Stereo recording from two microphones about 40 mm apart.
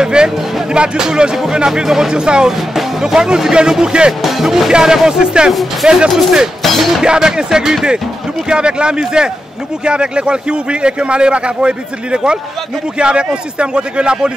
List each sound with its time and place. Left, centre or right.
0.0 s a man's voice: right
4.2 s a man's voice: centre; by 5.5 s right
5.5 s speech: centre
6.6 s music: centre
7.0 s a man's voice: centre